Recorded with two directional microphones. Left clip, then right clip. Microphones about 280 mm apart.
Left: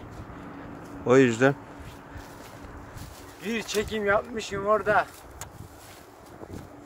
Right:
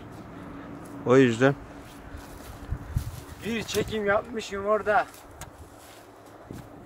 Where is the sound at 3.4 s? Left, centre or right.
Centre.